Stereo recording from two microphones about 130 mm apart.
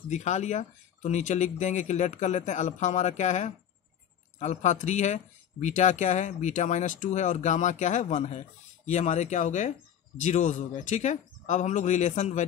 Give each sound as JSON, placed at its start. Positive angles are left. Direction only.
{"t": 0.1, "sound": "speech", "side_deg": 60}